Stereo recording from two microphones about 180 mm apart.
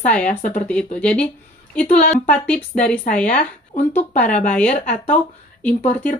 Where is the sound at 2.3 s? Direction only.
5° left (ahead or behind).